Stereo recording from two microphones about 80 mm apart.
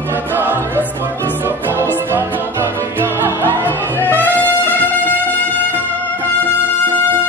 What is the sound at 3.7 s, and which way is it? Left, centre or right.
Music, left.